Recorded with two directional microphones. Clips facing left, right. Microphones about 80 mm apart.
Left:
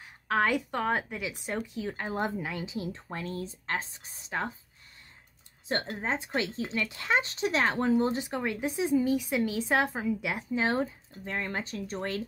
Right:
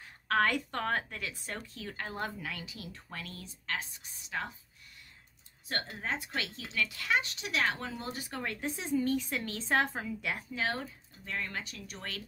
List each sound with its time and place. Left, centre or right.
0.0 s a woman's voice: centre; by 4.6 s left
5.9 s speech: left
10.5 s speech: left